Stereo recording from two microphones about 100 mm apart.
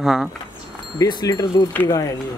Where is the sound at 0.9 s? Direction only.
40° left (ahead or behind).